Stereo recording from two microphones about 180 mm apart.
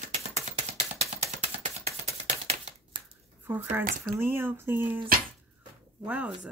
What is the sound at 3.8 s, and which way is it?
Speech, 50° right (ahead or behind).